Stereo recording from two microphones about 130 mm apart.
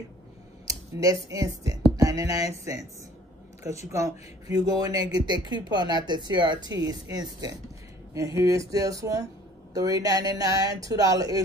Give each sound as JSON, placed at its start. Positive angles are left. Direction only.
{"t": 0.7, "sound": "speech", "side_deg": -25}
{"t": 3.9, "sound": "speech", "side_deg": -25}